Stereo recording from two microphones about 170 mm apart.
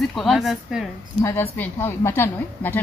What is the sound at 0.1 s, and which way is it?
Speech, centre (ahead or behind).